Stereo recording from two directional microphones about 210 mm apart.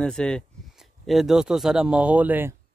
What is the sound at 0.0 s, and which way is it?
Speech, 5° left (ahead or behind).